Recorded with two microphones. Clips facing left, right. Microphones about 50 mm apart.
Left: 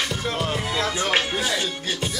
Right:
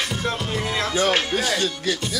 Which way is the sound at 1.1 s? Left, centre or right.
Centre.